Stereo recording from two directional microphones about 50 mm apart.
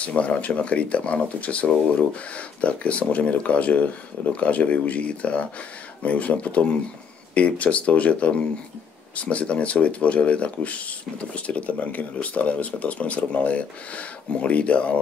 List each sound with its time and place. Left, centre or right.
0.0 s speech: left